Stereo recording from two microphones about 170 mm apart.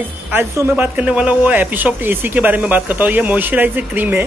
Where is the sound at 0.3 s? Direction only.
10° right (ahead or behind).